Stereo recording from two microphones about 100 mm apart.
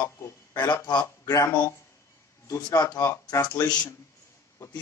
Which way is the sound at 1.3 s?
30° left (ahead or behind).